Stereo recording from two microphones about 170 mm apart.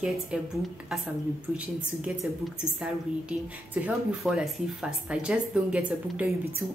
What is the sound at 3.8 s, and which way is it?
A woman's voice, 5° right (ahead or behind).